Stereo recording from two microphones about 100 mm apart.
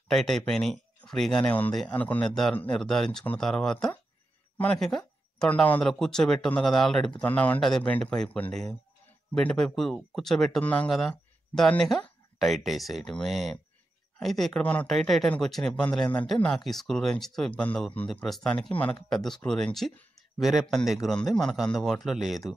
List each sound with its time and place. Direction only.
0.1 s speech: 5° left (ahead or behind)
2.2 s speech: 5° left (ahead or behind)
2.5 s speech: 15° left (ahead or behind)
2.8 s speech: 5° left (ahead or behind)
4.7 s a sound: 5° left (ahead or behind)
5.5 s speech: 15° left (ahead or behind)
7.2 s speech: 15° left (ahead or behind)
7.6 s speech: 5° left (ahead or behind)
10.6 s speech: 15° left (ahead or behind)
10.9 s speech: 5° left (ahead or behind)
14.9 s speech: 5° left (ahead or behind)
18.7 s speech: 15° left (ahead or behind)
19.0 s a man's voice: 5° left (ahead or behind)